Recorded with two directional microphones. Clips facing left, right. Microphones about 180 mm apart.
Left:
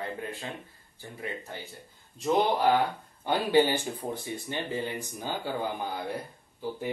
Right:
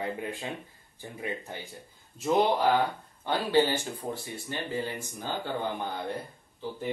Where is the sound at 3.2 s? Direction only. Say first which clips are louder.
Left 1 dB; 15° left (ahead or behind).